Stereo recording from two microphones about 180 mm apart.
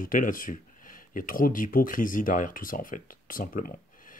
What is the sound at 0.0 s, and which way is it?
Speech, 50° left (ahead or behind).